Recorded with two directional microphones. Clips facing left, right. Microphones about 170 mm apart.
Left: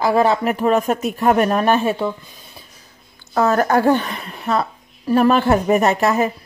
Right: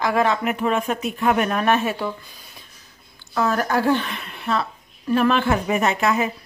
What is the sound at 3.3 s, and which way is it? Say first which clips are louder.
Speech: left 5 dB; 45° left (ahead or behind).